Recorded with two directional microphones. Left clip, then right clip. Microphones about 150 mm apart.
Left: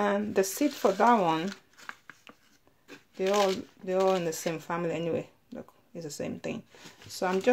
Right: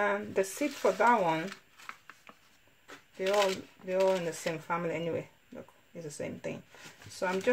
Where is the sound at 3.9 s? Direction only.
45° left (ahead or behind).